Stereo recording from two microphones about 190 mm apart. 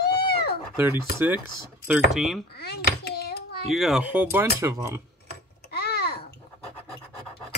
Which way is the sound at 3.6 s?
Centre (ahead or behind).